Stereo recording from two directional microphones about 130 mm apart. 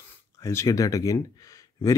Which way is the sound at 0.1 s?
20° left (ahead or behind).